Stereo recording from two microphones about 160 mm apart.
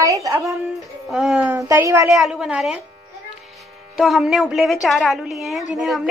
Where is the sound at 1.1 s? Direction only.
5° right (ahead or behind).